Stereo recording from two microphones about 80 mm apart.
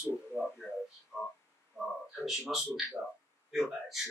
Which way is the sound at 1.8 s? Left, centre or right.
Centre.